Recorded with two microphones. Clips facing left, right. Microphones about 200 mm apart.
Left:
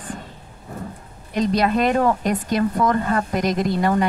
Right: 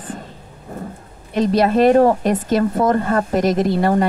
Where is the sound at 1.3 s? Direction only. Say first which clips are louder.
Right 4 dB; 40° right (ahead or behind).